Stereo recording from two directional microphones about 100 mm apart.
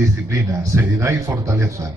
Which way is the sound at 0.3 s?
30° right (ahead or behind).